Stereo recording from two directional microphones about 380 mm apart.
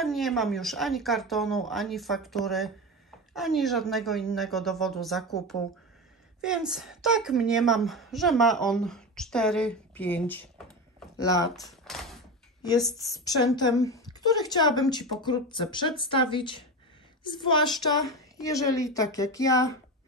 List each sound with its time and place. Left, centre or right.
0.0 s a woman's voice: centre